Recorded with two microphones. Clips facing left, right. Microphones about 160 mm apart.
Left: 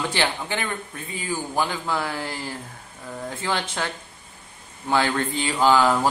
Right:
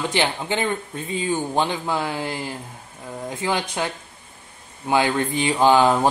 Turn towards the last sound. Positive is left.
turn(degrees=-20)  # may be behind; listen again after turning